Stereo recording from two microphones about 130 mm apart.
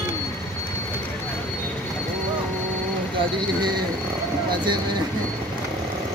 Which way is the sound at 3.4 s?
35° right (ahead or behind).